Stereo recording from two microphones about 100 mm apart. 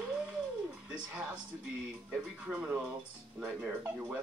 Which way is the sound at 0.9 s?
10° right (ahead or behind).